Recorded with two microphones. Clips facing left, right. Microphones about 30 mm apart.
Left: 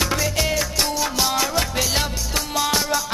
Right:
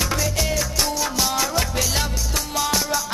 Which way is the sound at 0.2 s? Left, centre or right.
Left.